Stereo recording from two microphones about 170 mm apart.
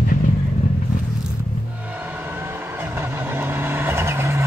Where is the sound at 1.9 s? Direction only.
10° right (ahead or behind).